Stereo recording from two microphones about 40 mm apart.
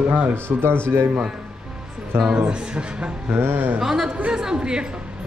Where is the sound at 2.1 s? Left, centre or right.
Right.